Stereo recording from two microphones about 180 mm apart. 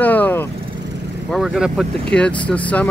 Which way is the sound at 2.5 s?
10° left (ahead or behind).